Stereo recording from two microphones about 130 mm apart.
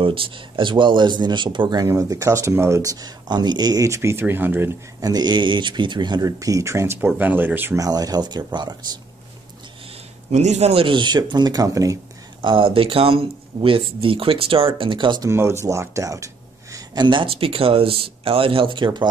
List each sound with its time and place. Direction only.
0.0 s speech: 40° right (ahead or behind); by 4.6 s 15° right (ahead or behind)
5.0 s speech: 30° right (ahead or behind); by 7.8 s 15° right (ahead or behind)
7.8 s speech: 30° right (ahead or behind)
10.3 s speech: 60° right (ahead or behind); by 12.0 s 25° right (ahead or behind)
12.4 s speech: 40° right (ahead or behind)
15.2 s speech: 20° right (ahead or behind); by 19.0 s 35° right (ahead or behind)